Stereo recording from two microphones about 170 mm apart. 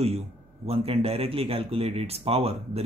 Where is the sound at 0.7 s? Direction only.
35° right (ahead or behind).